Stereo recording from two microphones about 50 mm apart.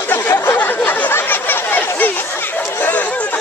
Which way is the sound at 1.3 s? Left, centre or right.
Left.